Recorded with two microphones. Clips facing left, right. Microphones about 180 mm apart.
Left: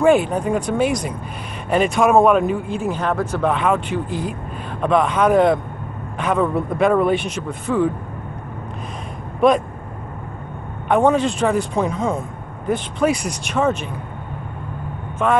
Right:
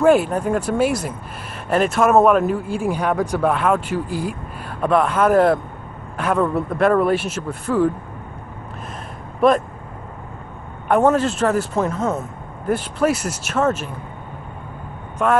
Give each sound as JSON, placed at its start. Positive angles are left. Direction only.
{"t": 0.0, "sound": "speech", "side_deg": -5}
{"t": 10.9, "sound": "speech", "side_deg": -5}